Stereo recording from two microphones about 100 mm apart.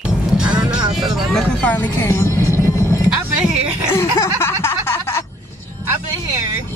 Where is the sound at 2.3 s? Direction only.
30° left (ahead or behind).